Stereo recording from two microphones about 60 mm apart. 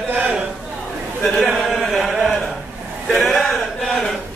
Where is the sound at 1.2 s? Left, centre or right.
Centre.